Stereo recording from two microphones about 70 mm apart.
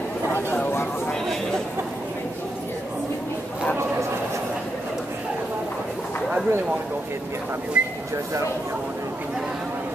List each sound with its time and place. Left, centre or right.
7.8 s speech: centre